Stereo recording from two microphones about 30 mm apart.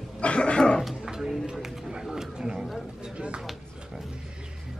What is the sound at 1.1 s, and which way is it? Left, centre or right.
Speech, centre.